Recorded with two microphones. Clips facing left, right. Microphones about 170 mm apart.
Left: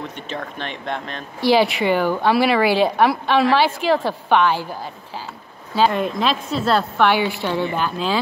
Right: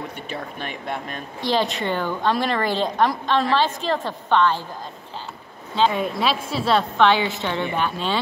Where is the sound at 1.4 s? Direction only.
10° left (ahead or behind).